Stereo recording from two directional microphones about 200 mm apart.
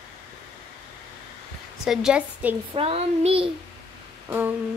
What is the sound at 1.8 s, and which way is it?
Speech, 5° right (ahead or behind).